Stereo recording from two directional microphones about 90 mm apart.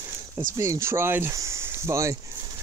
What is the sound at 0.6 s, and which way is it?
Speech, 35° right (ahead or behind).